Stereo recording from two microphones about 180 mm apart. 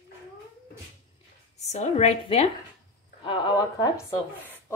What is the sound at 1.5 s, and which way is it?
Speech, 40° left (ahead or behind).